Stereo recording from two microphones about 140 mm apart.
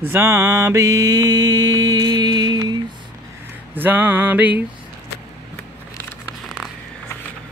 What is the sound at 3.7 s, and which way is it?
Speech, 15° right (ahead or behind).